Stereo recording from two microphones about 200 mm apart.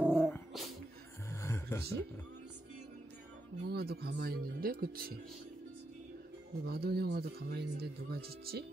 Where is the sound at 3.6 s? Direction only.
50° right (ahead or behind).